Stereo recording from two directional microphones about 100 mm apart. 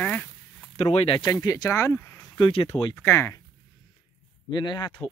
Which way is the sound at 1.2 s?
35° left (ahead or behind).